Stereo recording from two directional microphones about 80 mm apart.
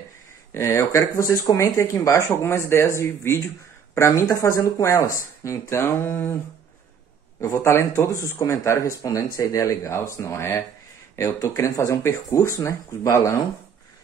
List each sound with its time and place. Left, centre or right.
0.5 s speech: left
7.3 s speech: left